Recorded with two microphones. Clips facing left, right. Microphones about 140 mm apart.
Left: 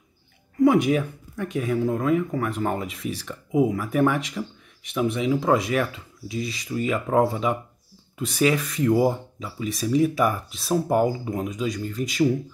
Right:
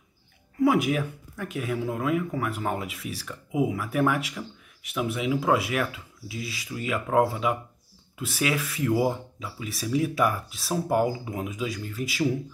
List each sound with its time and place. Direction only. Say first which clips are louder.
0.6 s speech: left 4 dB; 5° right (ahead or behind)